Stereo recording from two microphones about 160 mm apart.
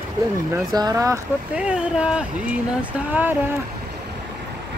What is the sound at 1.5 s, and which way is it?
Speech, 5° right (ahead or behind).